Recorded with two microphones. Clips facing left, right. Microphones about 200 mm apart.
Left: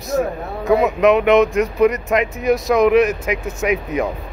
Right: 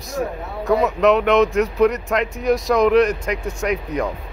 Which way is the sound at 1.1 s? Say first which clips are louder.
Left 3 dB; 15° left (ahead or behind).